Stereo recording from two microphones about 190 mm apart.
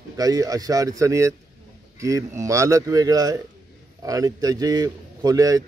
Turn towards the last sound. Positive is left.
turn(degrees=-20)  # may be behind; listen again after turning